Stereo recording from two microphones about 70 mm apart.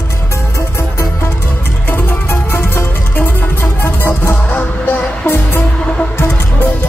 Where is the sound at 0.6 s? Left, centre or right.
Left.